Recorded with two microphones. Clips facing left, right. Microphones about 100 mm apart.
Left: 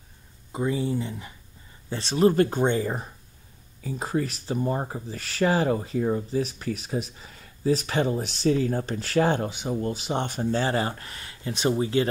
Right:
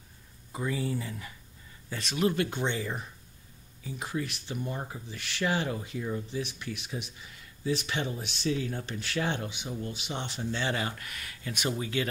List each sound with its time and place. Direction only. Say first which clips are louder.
0.5 s speech: left 6 dB; 25° left (ahead or behind)